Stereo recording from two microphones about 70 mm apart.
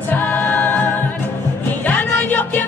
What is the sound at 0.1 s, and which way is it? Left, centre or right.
A capella, left.